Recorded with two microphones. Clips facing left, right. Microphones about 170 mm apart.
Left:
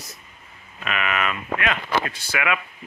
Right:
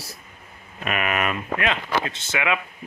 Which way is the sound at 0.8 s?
40° right (ahead or behind).